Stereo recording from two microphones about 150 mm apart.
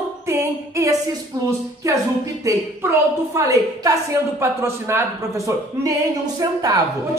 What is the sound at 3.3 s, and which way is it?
A woman's voice, 20° right (ahead or behind).